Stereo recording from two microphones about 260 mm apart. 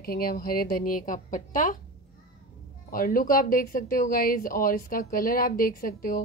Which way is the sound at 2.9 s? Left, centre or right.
Left.